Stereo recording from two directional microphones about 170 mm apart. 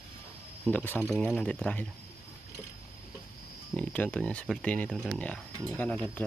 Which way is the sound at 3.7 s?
5° left (ahead or behind).